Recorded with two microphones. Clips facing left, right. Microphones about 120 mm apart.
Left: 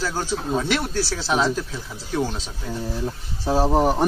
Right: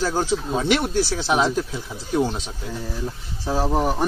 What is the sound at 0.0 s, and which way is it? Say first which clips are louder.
Speech: right 3 dB; 20° right (ahead or behind).